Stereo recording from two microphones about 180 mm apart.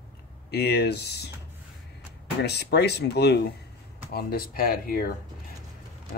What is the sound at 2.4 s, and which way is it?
Speech, 65° left (ahead or behind).